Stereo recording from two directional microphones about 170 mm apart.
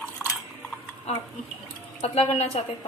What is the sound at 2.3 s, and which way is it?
Speech, 40° left (ahead or behind).